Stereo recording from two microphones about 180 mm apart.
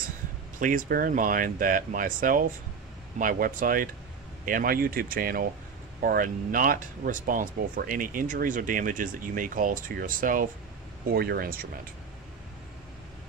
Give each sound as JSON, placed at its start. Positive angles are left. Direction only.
{"t": 0.6, "sound": "speech", "side_deg": -50}